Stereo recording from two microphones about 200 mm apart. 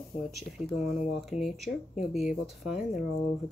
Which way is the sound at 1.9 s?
5° right (ahead or behind).